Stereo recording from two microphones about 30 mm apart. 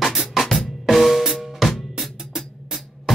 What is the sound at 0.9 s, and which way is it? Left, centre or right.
Drum kit, centre.